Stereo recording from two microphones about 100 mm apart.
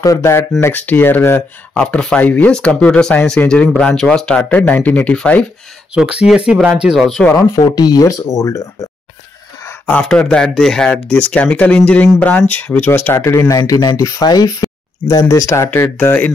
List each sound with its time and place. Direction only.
0.0 s speech: 30° left (ahead or behind)
1.7 s speech: 10° left (ahead or behind)
5.9 s speech: 10° right (ahead or behind)
7.7 s speech: 40° left (ahead or behind)
9.8 s speech: 10° left (ahead or behind)
13.4 s speech: 35° left (ahead or behind)